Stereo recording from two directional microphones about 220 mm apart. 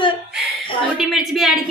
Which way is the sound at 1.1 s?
Centre (ahead or behind).